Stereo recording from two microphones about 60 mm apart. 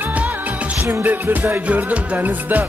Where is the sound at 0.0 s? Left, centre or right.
Right.